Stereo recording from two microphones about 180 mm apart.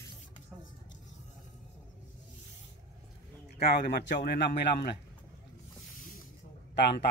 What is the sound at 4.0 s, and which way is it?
Speech, 70° left (ahead or behind).